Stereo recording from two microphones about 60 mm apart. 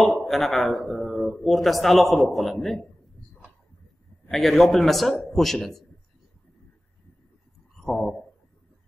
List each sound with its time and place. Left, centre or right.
0.2 s a man's voice: centre
4.3 s a man's voice: centre
7.7 s a sound: centre